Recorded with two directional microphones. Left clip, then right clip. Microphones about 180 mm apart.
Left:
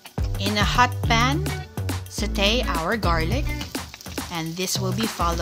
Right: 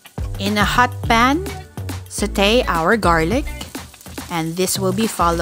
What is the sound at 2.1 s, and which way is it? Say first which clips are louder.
Speech: right 7 dB; 35° right (ahead or behind).